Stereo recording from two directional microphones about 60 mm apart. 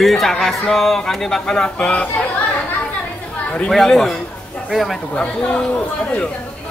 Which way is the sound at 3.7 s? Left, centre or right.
Centre.